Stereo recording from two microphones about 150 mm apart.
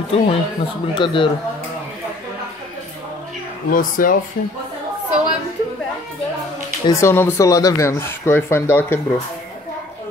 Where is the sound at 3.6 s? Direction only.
65° left (ahead or behind).